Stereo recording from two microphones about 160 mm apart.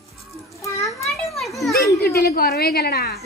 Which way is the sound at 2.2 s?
70° left (ahead or behind).